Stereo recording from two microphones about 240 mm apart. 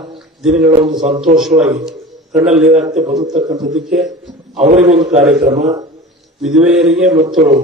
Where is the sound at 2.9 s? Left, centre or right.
Right.